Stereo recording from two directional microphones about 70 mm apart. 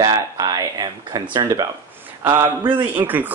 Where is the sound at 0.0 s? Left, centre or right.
Right.